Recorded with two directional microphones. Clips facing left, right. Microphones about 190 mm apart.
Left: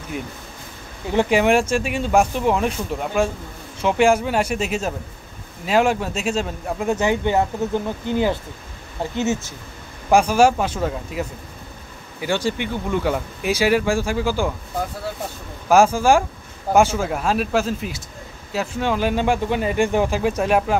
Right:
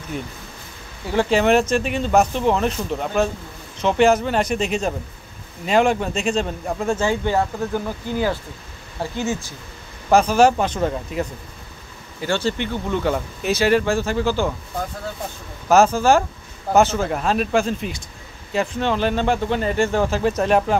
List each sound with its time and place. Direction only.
1.1 s speech: 10° left (ahead or behind)
6.9 s speech: 20° left (ahead or behind)
10.0 s speech: 10° left (ahead or behind)
15.7 s speech: 10° left (ahead or behind)